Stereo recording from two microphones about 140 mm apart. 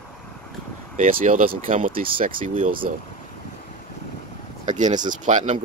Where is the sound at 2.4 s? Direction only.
75° right (ahead or behind).